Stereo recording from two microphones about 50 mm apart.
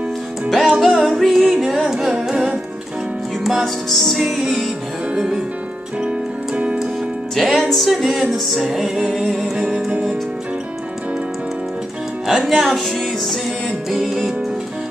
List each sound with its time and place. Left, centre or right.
0.7 s music: centre
1.8 s carnatic music: centre
3.6 s music: centre
4.2 s music: centre
6.0 s music: right
7.3 s music: centre
12.3 s music: centre